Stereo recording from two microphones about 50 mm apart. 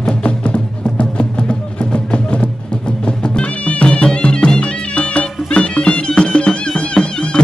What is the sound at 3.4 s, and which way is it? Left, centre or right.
Music, left.